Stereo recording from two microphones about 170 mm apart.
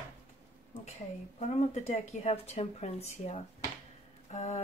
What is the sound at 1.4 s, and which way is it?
Speech, 40° left (ahead or behind).